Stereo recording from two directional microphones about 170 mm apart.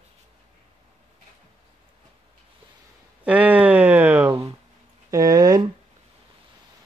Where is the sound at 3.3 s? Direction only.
10° right (ahead or behind).